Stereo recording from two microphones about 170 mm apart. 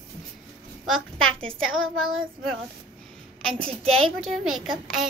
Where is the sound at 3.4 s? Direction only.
5° left (ahead or behind).